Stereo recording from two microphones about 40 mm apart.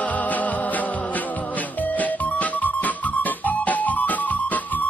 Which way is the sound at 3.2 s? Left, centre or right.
Left.